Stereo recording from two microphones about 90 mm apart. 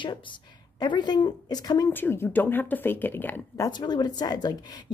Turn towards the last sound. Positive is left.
turn(degrees=45)  # may be behind; listen again after turning